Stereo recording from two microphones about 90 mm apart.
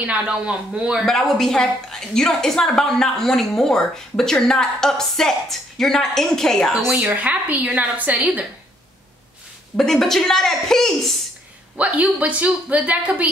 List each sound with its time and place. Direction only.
0.0 s a woman's voice: 15° right (ahead or behind)
1.0 s a woman's voice: 5° left (ahead or behind)
6.8 s a woman's voice: 5° right (ahead or behind)
9.8 s a woman's voice: 5° left (ahead or behind)
11.7 s a woman's voice: 15° right (ahead or behind)